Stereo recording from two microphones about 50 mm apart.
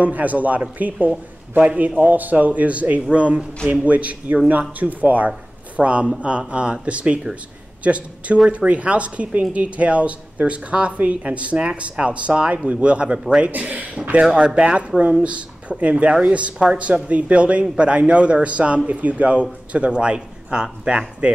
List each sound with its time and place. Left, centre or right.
0.0 s speech: right; by 21.0 s centre